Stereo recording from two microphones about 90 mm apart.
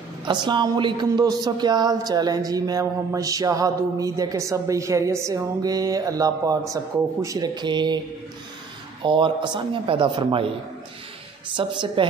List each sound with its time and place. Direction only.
0.2 s a woman's voice: 60° right (ahead or behind)
9.0 s speech: 65° right (ahead or behind)
11.5 s speech: 65° right (ahead or behind)